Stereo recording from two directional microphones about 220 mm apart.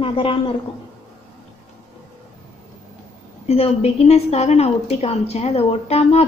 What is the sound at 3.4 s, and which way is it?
A woman's voice, 25° left (ahead or behind).